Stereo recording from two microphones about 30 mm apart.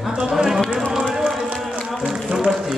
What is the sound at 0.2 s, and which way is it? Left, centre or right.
Run, centre.